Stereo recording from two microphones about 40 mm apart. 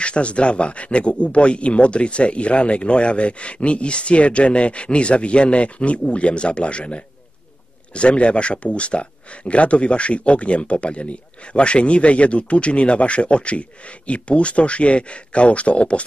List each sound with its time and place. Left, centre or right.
0.0 s speech: left